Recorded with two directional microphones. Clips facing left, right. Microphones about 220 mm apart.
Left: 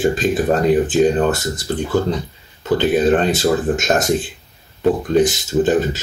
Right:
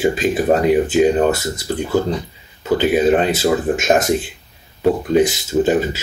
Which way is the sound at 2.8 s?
10° right (ahead or behind).